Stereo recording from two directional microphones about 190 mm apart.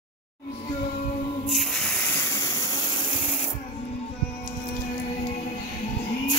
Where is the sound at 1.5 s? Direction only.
Centre (ahead or behind); by 3.3 s 25° left (ahead or behind).